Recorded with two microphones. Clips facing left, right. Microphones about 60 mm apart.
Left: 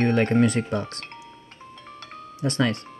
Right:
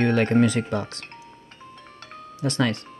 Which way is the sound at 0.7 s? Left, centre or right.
Left.